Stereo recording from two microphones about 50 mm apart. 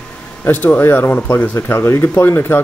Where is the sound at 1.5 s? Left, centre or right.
Left.